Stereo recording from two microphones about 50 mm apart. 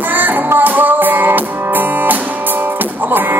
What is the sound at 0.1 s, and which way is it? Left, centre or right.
Music, right.